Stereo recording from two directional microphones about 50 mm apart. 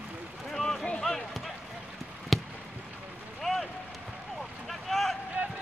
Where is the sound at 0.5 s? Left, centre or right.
Centre.